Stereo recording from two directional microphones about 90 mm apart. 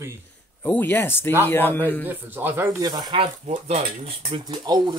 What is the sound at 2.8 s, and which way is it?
Speech, 50° right (ahead or behind).